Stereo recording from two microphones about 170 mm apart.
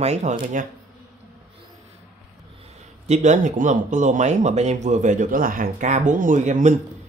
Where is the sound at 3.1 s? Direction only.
45° right (ahead or behind).